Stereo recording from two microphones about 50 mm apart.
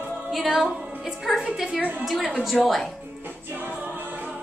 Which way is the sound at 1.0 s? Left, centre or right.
Centre.